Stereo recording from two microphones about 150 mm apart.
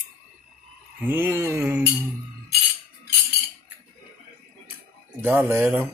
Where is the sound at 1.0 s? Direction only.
15° right (ahead or behind).